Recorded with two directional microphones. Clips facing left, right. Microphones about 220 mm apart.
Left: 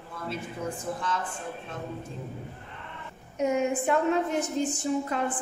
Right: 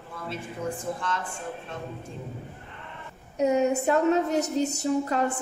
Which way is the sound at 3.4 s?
40° right (ahead or behind).